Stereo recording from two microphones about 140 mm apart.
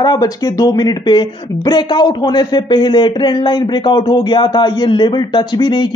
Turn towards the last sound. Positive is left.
turn(degrees=35)  # may be behind; listen again after turning